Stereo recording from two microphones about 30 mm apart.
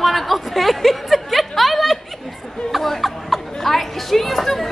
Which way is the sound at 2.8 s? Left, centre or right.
Centre.